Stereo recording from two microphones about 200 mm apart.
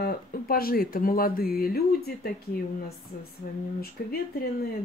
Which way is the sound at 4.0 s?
50° left (ahead or behind).